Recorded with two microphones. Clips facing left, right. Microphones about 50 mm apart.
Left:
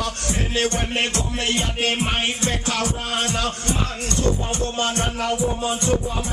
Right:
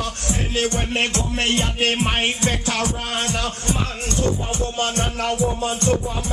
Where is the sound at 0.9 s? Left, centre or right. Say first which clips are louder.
Right 2 dB; right.